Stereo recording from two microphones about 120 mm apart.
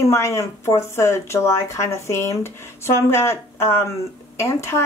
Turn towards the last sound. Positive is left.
turn(degrees=25)  # may be behind; listen again after turning